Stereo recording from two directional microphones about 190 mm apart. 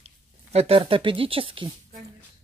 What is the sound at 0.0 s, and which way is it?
Speech, 35° right (ahead or behind).